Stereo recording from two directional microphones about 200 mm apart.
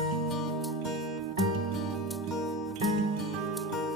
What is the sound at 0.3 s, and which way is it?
Music, centre (ahead or behind).